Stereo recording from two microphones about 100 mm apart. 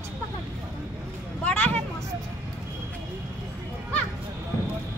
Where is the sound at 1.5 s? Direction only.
15° left (ahead or behind).